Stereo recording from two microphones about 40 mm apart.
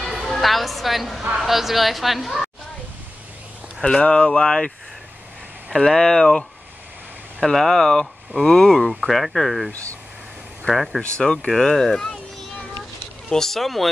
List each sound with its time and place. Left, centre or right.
0.0 s a woman's voice: centre
3.8 s speech: left
5.8 s speech: centre
10.7 s speech: centre
11.1 s speech: centre
11.5 s speech: centre
13.3 s speech: centre